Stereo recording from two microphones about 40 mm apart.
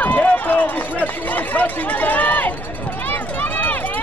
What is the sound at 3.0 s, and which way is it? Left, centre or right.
Run, left.